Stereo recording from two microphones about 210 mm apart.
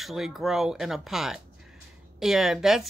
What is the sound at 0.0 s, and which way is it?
A woman's voice, centre (ahead or behind).